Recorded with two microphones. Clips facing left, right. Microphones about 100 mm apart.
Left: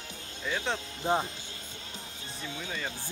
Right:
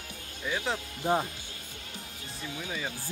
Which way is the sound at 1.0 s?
25° left (ahead or behind).